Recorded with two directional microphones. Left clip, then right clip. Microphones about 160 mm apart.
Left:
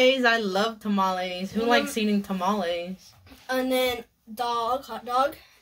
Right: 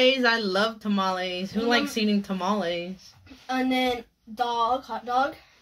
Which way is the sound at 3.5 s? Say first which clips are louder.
Left 1 dB; 25° left (ahead or behind).